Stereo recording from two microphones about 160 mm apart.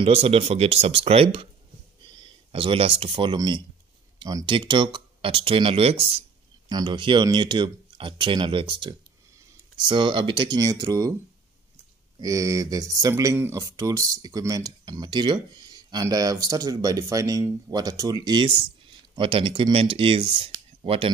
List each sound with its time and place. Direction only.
0.0 s speech: 35° right (ahead or behind)
12.2 s speech: 20° right (ahead or behind)